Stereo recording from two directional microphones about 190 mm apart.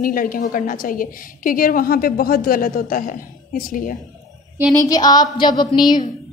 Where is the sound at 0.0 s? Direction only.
45° left (ahead or behind).